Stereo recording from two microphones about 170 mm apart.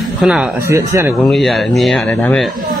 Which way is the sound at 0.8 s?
15° right (ahead or behind).